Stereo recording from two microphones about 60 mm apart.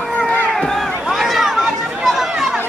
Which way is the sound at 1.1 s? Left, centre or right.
Centre.